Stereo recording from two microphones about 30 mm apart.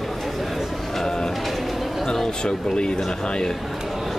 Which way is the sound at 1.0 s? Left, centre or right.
Centre.